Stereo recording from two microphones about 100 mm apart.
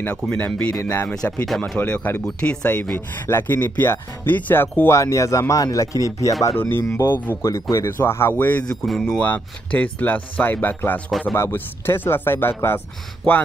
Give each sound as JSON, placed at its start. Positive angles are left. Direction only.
{"t": 0.0, "sound": "speech", "side_deg": 15}
{"t": 0.7, "sound": "speech", "side_deg": 30}
{"t": 6.5, "sound": "speech", "side_deg": 20}
{"t": 8.8, "sound": "speech", "side_deg": 5}
{"t": 9.2, "sound": "speech", "side_deg": 15}
{"t": 11.1, "sound": "speech", "side_deg": 0}
{"t": 11.3, "sound": "speech", "side_deg": 25}